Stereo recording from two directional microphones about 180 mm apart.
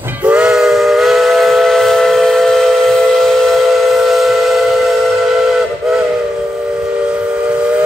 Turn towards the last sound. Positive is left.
turn(degrees=-5)  # may be behind; listen again after turning